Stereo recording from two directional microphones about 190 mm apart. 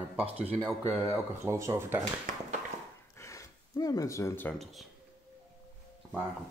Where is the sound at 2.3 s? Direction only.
45° right (ahead or behind).